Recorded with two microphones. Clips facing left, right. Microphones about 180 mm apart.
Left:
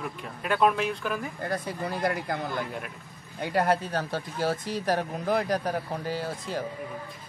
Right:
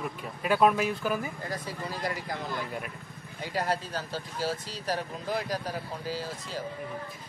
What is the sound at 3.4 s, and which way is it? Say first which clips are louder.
Speech: left 6 dB; 60° left (ahead or behind).